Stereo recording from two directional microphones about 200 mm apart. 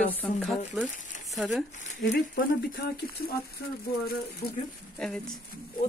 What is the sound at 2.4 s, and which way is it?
Speech, 50° left (ahead or behind).